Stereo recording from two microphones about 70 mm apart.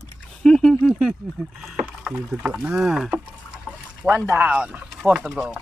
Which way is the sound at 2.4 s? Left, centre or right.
Centre.